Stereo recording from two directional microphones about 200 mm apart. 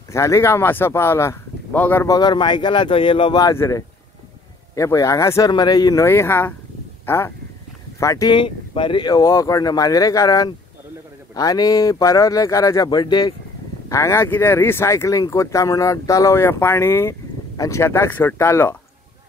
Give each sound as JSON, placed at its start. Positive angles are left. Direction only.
{"t": 0.1, "sound": "speech", "side_deg": 15}